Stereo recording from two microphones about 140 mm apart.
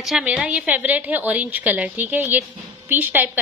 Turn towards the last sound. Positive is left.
turn(degrees=-10)  # may be behind; listen again after turning